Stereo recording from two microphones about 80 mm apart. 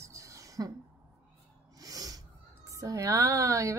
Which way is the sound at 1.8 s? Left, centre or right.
Right.